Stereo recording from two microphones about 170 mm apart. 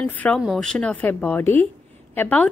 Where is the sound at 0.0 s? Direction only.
5° left (ahead or behind).